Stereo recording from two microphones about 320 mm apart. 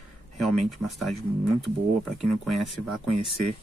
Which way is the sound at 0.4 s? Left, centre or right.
Centre.